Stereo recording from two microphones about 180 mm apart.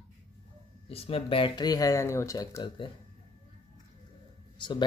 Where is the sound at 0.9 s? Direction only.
35° left (ahead or behind).